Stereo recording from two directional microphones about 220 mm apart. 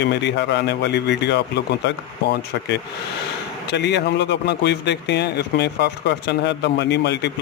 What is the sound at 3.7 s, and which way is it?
Speech, 50° left (ahead or behind).